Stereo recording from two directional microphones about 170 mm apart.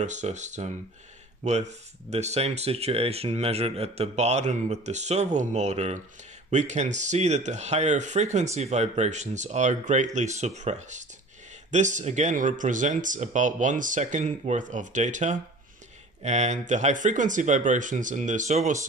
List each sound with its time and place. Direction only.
0.0 s speech: 45° right (ahead or behind)